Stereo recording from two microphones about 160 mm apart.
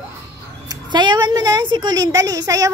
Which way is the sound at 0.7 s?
30° right (ahead or behind).